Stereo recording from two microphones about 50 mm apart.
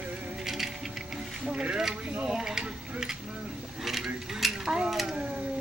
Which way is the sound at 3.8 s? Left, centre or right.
Centre.